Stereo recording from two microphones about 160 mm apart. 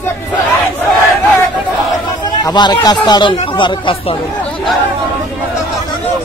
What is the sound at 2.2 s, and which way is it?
Speech, 25° left (ahead or behind).